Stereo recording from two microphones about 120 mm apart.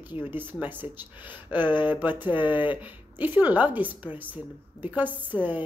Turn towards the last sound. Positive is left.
turn(degrees=-15)  # may be behind; listen again after turning